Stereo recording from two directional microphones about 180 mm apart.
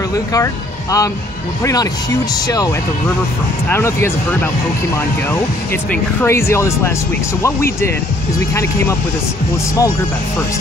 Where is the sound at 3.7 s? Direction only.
15° left (ahead or behind).